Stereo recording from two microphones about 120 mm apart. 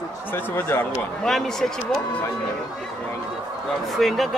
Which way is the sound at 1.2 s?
5° left (ahead or behind).